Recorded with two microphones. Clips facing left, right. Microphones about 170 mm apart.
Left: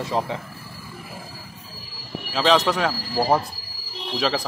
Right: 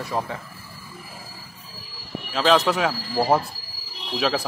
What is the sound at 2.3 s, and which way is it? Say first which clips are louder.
Speech: even; centre (ahead or behind).